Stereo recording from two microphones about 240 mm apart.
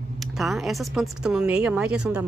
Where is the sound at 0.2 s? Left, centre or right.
Centre.